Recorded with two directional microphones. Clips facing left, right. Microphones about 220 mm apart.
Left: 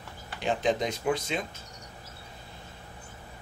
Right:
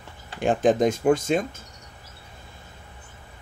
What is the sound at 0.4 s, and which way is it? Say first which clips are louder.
Speech: right 8 dB; 50° right (ahead or behind).